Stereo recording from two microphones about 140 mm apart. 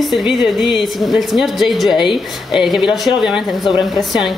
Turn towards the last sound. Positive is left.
turn(degrees=0)  # may be behind; listen again after turning